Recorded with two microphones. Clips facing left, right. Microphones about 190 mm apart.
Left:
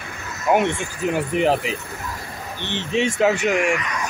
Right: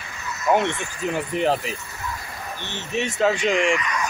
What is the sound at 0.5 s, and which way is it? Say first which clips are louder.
Speech: left 2 dB; 10° left (ahead or behind).